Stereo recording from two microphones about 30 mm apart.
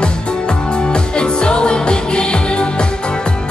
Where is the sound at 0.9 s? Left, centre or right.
Left.